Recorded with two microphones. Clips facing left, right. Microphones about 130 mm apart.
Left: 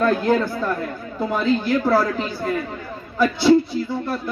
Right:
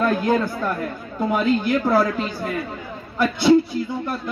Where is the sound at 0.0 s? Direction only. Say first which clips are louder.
Left 1 dB; 15° right (ahead or behind).